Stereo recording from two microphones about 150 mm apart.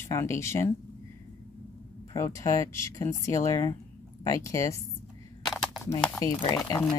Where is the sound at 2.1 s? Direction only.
20° left (ahead or behind).